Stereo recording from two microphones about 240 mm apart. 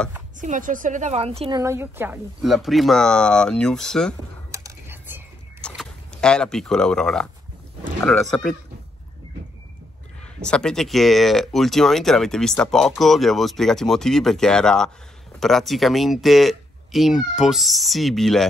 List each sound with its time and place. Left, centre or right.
0.4 s a woman's voice: right
1.6 s speech: centre
4.5 s typing: centre
5.6 s speech: centre
10.4 s speech: centre